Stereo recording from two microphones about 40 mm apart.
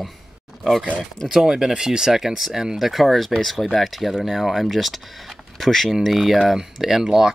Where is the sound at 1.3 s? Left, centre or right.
Centre.